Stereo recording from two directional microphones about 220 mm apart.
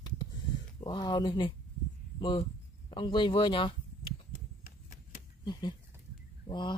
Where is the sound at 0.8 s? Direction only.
20° left (ahead or behind).